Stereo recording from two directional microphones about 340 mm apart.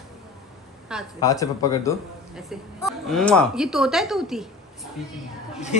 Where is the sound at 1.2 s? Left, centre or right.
Centre.